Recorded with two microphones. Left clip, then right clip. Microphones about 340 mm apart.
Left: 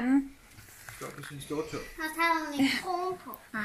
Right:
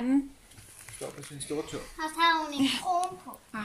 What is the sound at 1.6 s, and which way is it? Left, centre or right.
Speech, right.